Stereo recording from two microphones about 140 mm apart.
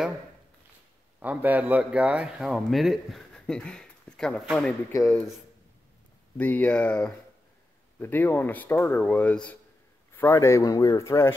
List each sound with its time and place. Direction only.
1.2 s speech: 10° right (ahead or behind); by 4.7 s 5° left (ahead or behind)
6.3 s speech: 10° left (ahead or behind)